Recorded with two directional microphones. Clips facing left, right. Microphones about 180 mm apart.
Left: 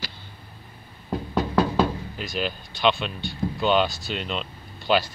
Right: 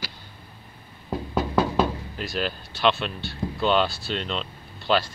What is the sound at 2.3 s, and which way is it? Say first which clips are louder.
Speech: even; centre (ahead or behind).